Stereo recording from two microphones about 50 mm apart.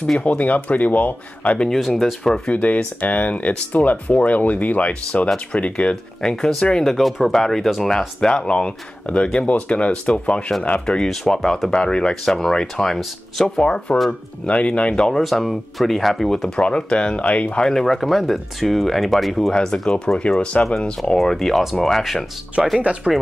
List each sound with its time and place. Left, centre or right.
0.2 s speech: left
2.0 s speech: centre
2.5 s speech: left
6.2 s speech: centre
8.2 s speech: centre
11.1 s speech: centre
13.6 s speech: left
15.0 s speech: centre
19.5 s speech: centre
20.2 s speech: centre
21.2 s speech: centre
22.6 s speech: centre